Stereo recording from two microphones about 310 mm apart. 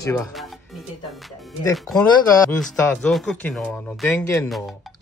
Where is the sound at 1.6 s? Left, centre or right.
Centre.